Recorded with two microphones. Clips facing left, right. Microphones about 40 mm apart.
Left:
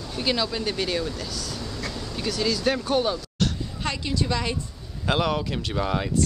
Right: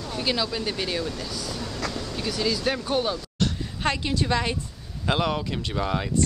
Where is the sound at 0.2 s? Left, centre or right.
Centre.